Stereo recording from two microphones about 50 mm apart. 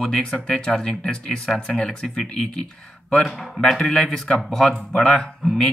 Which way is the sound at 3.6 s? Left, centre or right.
Centre.